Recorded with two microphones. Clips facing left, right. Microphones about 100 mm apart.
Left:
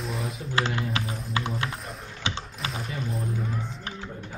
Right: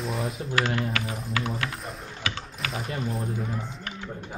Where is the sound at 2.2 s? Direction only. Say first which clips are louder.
Left 1 dB; 25° left (ahead or behind).